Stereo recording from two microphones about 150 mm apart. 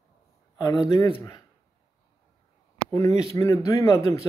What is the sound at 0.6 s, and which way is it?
Speech, 25° left (ahead or behind).